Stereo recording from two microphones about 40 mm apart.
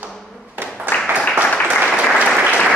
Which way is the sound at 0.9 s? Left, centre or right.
Right.